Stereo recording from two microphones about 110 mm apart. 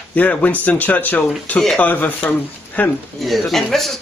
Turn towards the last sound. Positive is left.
turn(degrees=0)  # may be behind; listen again after turning